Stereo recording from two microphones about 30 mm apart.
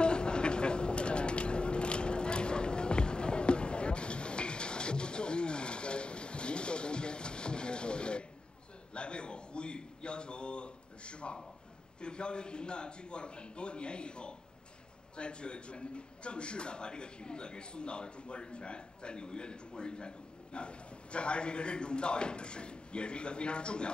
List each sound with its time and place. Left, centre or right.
0.0 s vehicle: left
8.9 s a sound: left
12.0 s a man's voice: left